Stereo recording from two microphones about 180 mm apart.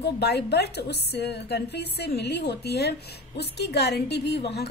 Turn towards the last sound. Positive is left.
turn(degrees=65)  # may be behind; listen again after turning